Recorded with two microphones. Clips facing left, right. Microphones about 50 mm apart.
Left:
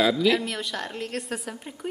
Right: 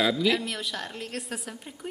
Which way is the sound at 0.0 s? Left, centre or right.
Centre.